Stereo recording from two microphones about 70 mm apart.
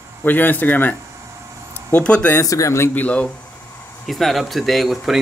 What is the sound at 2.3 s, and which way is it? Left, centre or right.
Speech, left.